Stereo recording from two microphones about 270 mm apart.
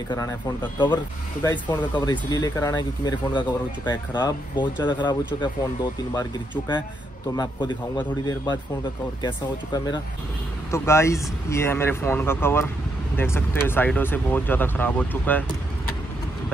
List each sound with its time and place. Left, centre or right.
0.1 s speech: centre
7.3 s speech: centre